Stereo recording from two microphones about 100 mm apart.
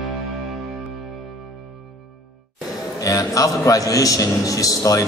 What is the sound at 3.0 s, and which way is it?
Speech, 35° left (ahead or behind).